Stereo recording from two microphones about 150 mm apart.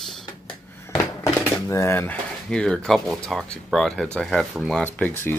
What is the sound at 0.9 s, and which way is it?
Speech, 20° left (ahead or behind).